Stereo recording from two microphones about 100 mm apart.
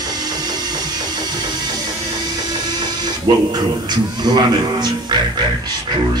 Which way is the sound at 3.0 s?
45° right (ahead or behind).